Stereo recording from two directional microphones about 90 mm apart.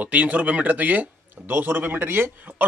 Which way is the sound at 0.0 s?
15° right (ahead or behind).